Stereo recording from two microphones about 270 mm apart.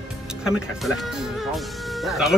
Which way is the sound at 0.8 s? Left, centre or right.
Centre.